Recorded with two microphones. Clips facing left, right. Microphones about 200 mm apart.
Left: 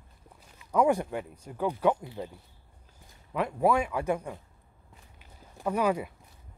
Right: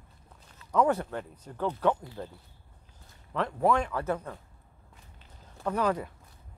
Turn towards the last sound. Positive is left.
turn(degrees=10)  # may be behind; listen again after turning